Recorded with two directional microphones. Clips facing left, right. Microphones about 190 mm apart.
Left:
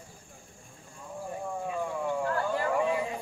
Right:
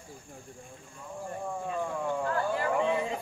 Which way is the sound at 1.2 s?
10° left (ahead or behind).